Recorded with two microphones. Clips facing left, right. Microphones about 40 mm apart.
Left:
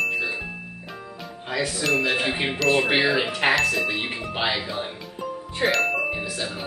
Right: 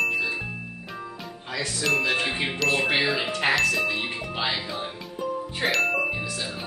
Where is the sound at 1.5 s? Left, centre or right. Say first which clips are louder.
Left 2 dB; centre.